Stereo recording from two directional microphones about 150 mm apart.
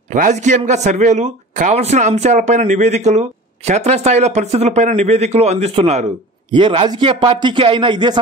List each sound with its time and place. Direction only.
0.1 s a man's voice: 55° right (ahead or behind); by 8.2 s 30° right (ahead or behind)